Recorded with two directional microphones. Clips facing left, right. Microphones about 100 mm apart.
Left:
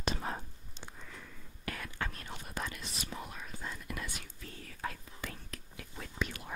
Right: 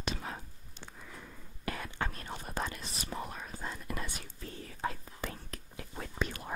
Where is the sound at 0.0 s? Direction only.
40° left (ahead or behind).